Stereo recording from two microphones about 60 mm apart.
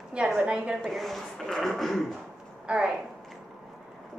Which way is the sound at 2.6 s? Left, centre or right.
Centre.